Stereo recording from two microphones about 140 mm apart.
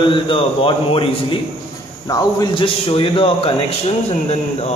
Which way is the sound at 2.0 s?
25° left (ahead or behind).